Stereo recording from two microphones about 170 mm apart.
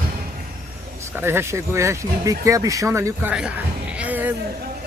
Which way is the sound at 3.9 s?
10° right (ahead or behind).